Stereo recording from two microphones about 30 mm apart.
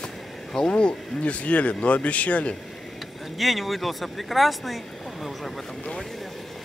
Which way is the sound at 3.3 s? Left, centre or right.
Centre.